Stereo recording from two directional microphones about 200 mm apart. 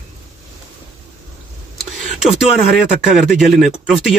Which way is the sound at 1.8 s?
Centre (ahead or behind).